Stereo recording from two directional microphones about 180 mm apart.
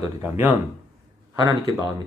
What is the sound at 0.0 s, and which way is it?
Speech, 10° right (ahead or behind).